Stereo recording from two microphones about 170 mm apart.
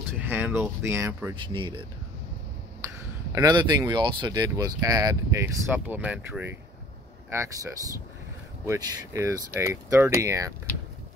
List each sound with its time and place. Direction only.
0.2 s speech: 10° right (ahead or behind)
1.3 s speech: 30° right (ahead or behind)
3.3 s speech: 25° right (ahead or behind)